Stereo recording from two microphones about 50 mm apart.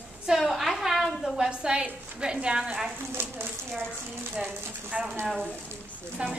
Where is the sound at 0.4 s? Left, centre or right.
Centre.